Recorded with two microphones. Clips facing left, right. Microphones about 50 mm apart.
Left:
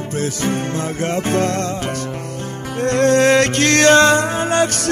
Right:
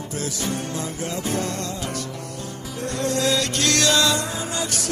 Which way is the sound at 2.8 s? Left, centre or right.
Left.